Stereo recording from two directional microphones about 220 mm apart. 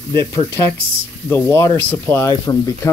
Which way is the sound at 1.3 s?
10° left (ahead or behind).